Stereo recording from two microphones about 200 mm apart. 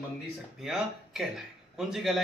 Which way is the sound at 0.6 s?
Centre (ahead or behind).